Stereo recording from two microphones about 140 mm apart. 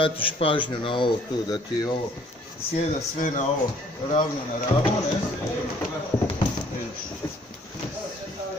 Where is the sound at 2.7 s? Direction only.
65° left (ahead or behind).